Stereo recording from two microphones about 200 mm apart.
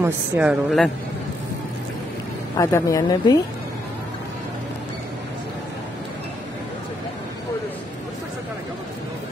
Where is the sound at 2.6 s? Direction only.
15° left (ahead or behind).